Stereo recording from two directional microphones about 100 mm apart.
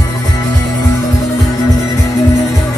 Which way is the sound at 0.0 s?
35° left (ahead or behind).